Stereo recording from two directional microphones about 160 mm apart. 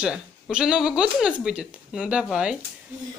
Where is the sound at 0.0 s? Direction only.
5° right (ahead or behind).